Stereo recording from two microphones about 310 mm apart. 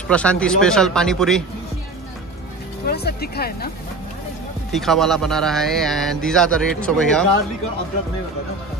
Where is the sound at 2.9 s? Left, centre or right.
Left.